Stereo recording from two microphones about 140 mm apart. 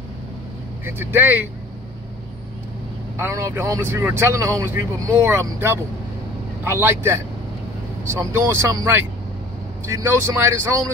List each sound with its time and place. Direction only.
0.8 s speech: 15° right (ahead or behind)
3.2 s speech: 20° right (ahead or behind)